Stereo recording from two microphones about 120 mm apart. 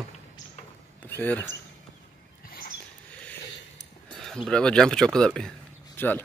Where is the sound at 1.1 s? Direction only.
15° left (ahead or behind).